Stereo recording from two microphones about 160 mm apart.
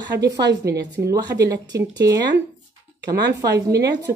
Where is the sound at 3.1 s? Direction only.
90° right.